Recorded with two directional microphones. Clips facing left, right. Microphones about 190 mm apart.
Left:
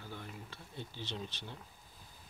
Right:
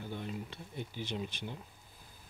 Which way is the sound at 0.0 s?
20° right (ahead or behind).